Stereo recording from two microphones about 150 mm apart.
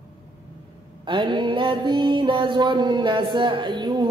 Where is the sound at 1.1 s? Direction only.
30° right (ahead or behind).